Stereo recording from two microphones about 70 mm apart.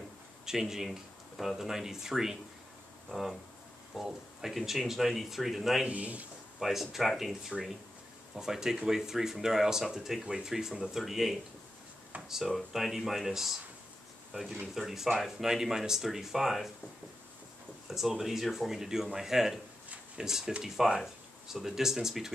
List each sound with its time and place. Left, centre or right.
0.5 s speech: centre
5.9 s a man's voice: right
6.6 s speech: centre
12.4 s speech: centre
14.7 s speech: centre
17.8 s speech: centre